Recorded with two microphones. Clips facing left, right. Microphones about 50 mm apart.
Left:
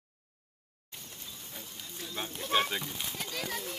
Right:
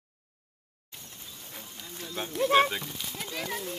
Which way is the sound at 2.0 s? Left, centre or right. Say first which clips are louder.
Right 9 dB; centre.